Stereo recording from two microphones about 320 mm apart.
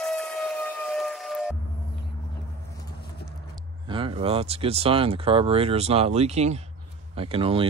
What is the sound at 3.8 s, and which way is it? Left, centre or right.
Speech, centre.